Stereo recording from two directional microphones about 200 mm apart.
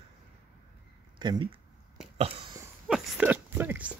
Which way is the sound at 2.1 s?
30° right (ahead or behind).